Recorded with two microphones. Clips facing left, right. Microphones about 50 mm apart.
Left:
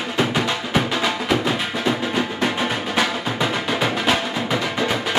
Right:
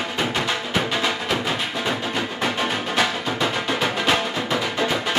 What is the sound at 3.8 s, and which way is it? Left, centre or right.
Music, centre.